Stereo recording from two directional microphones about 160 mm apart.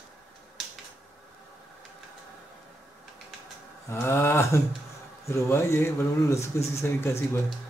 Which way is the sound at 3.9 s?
15° left (ahead or behind).